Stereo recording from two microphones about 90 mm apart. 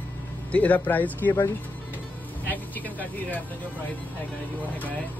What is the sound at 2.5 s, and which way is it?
Speech, 20° left (ahead or behind).